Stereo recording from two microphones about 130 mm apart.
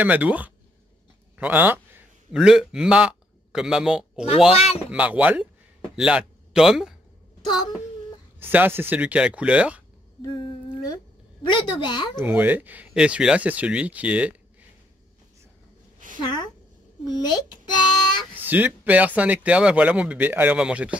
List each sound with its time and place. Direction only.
0.0 s speech: 10° right (ahead or behind)
4.5 s speech: 50° left (ahead or behind)
4.9 s speech: 10° right (ahead or behind)
8.4 s speech: 15° right (ahead or behind)
10.2 s humming: 35° left (ahead or behind)
11.4 s a child's voice: 35° left (ahead or behind)
12.2 s speech: 15° right (ahead or behind)
17.0 s a child's voice: 30° left (ahead or behind)
18.3 s speech: 15° right (ahead or behind)